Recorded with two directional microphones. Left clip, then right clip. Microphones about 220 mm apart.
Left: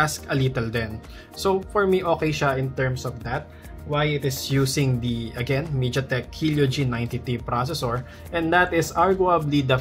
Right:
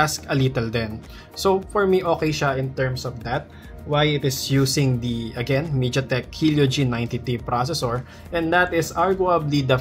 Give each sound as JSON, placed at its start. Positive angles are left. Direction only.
{"t": 0.0, "sound": "speech", "side_deg": -15}
{"t": 3.3, "sound": "speech", "side_deg": -15}